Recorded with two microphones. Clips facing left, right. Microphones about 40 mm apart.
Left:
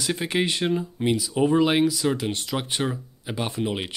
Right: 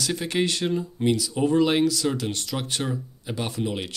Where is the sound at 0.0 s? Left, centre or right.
Centre.